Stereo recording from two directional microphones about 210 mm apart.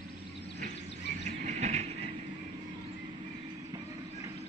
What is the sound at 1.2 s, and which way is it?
Train, 35° right (ahead or behind).